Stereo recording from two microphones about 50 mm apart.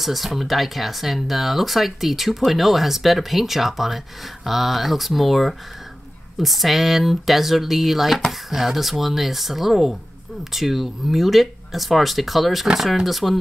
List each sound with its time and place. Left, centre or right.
0.0 s speech: centre